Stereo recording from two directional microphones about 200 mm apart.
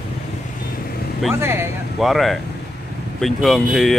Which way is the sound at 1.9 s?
Centre (ahead or behind).